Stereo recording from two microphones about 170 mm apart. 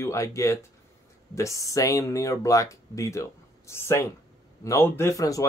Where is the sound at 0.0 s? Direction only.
15° left (ahead or behind).